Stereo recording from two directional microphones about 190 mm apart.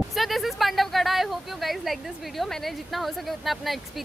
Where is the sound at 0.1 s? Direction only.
Centre (ahead or behind).